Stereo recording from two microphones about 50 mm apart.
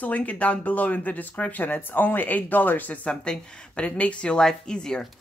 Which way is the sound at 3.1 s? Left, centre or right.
Centre.